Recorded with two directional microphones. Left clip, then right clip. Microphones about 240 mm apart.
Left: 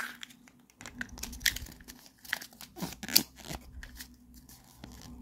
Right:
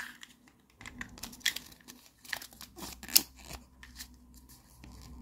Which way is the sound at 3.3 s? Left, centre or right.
Centre.